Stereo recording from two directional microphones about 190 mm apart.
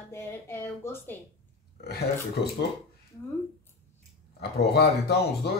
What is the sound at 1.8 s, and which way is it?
Speech, 55° left (ahead or behind).